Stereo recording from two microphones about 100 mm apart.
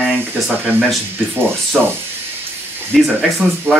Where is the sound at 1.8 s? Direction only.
5° right (ahead or behind).